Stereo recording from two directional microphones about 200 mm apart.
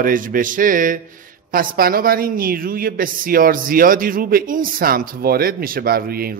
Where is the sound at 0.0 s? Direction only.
45° right (ahead or behind).